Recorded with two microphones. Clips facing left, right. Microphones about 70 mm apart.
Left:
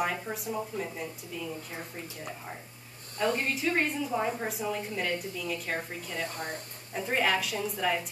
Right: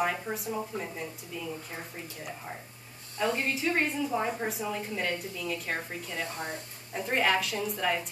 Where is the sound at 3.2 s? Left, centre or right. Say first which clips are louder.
Even; centre.